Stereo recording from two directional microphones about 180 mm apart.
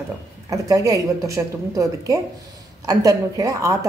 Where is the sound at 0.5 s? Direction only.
20° right (ahead or behind).